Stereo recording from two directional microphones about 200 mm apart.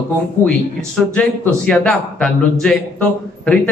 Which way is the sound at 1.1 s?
5° left (ahead or behind).